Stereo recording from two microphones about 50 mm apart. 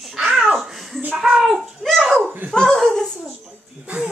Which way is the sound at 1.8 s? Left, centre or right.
Centre.